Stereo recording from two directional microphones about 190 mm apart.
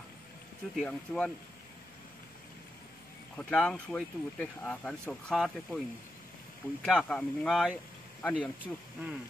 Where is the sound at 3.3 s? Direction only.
5° left (ahead or behind).